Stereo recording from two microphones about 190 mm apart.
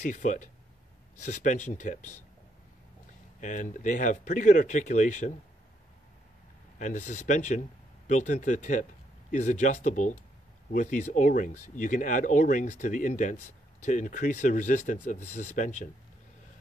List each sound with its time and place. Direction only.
0.1 s speech: 40° left (ahead or behind)
3.3 s speech: 40° left (ahead or behind)
6.8 s speech: 40° left (ahead or behind)